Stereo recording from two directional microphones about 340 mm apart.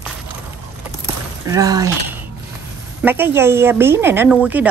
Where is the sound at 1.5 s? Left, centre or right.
Centre.